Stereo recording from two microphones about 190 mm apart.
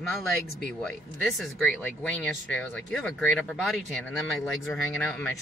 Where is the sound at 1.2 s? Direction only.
Centre (ahead or behind).